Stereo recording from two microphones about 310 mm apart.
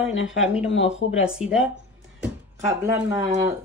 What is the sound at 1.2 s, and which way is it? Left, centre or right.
Speech, centre.